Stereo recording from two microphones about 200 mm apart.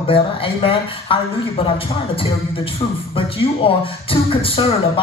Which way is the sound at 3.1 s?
25° left (ahead or behind).